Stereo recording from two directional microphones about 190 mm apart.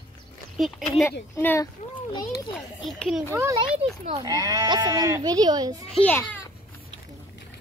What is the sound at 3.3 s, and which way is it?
Speech, 15° right (ahead or behind).